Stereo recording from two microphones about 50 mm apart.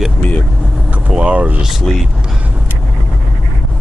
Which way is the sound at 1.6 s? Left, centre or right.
Centre.